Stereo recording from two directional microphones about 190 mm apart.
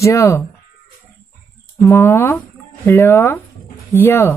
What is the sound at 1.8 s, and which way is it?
Speech, 15° left (ahead or behind).